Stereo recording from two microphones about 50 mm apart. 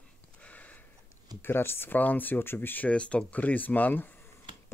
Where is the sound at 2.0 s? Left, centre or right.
Left.